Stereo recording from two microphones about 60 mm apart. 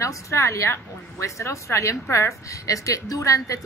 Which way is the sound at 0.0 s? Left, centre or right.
Left.